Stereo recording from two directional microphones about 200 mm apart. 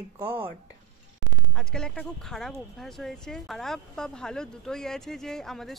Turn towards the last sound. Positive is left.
turn(degrees=0)  # may be behind; listen again after turning